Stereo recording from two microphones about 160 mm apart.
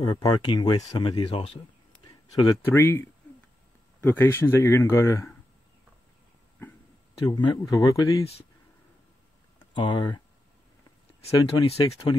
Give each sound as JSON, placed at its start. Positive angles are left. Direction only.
{"t": 0.0, "sound": "speech", "side_deg": 25}
{"t": 2.0, "sound": "speech", "side_deg": 20}
{"t": 7.2, "sound": "speech", "side_deg": 30}
{"t": 9.8, "sound": "speech", "side_deg": 30}
{"t": 11.3, "sound": "speech", "side_deg": 25}